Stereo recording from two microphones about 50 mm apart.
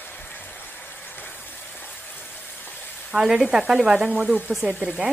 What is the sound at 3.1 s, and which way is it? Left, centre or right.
Speech, centre.